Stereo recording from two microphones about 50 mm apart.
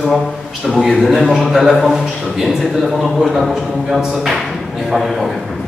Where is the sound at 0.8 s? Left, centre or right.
Centre.